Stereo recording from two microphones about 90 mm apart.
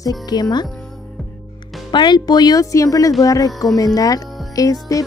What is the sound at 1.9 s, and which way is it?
Speech, 55° left (ahead or behind).